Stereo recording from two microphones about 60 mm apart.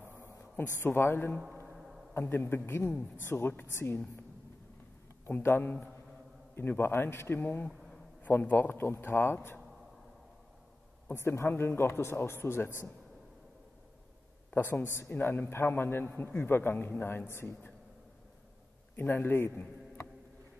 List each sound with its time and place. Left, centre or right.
0.6 s a man's voice: left
1.7 s a sound: centre
2.1 s a man's voice: left
5.3 s a man's voice: left
11.1 s a man's voice: left
14.5 s a man's voice: left
18.9 s a man's voice: left